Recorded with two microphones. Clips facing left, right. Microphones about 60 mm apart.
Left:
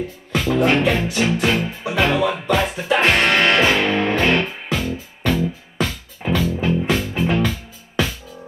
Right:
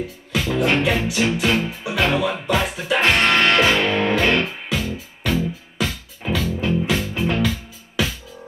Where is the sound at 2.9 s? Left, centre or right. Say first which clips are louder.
Left 1 dB; centre.